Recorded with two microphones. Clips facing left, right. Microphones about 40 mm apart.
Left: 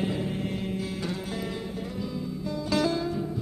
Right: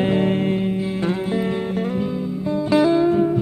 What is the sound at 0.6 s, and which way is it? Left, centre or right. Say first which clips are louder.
Music: right 9 dB; right.